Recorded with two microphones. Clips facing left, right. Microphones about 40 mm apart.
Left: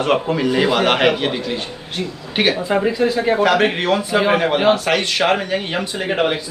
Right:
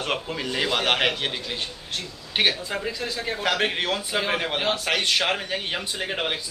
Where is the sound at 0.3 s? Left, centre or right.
Centre.